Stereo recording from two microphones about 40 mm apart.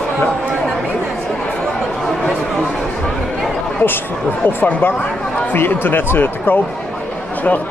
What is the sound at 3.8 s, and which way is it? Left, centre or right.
Speech, left.